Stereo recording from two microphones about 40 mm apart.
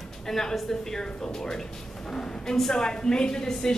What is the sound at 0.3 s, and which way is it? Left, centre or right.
A woman's voice, centre.